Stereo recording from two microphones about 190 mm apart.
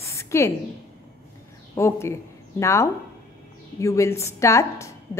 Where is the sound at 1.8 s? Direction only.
15° left (ahead or behind).